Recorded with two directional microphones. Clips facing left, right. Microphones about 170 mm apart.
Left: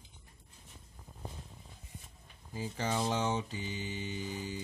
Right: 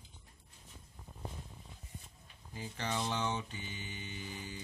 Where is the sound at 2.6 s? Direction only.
35° left (ahead or behind).